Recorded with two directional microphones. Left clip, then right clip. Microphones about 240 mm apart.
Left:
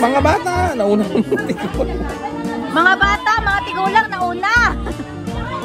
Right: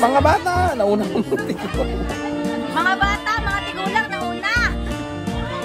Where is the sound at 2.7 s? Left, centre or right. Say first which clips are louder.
Left 6 dB; centre.